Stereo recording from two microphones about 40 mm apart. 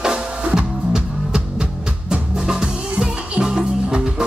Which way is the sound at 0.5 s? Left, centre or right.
Centre.